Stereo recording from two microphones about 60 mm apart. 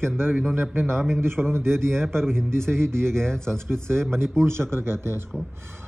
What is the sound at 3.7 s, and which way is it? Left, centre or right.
Speech, right.